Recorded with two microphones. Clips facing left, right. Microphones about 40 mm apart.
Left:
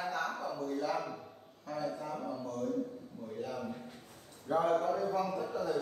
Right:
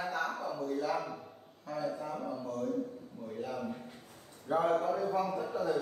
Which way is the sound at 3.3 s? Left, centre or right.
Centre.